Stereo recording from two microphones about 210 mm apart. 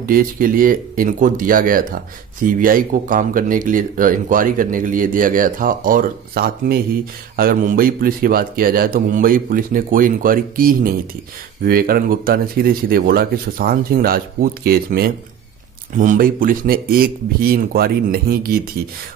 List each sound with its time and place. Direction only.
0.0 s a man's voice: 45° right (ahead or behind)